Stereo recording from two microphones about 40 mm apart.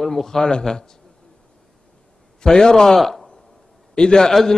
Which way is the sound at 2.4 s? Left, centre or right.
Centre.